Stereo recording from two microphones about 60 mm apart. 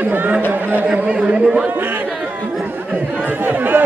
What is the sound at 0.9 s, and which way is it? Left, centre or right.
Chatter, centre.